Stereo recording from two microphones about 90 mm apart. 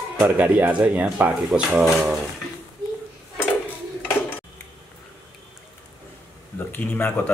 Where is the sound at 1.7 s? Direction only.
Centre (ahead or behind).